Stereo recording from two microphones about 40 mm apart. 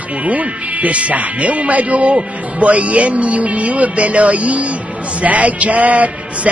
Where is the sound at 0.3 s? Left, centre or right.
Right.